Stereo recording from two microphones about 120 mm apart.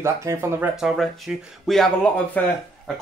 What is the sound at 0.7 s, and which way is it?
Speech, centre (ahead or behind).